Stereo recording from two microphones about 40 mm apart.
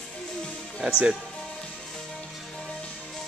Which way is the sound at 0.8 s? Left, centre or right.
Right.